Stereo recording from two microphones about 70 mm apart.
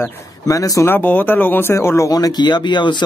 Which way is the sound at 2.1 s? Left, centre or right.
Left.